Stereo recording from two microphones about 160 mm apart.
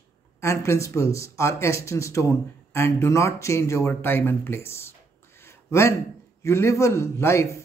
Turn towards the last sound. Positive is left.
turn(degrees=20)  # may be behind; listen again after turning